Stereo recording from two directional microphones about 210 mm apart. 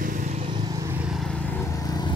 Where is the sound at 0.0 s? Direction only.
35° right (ahead or behind).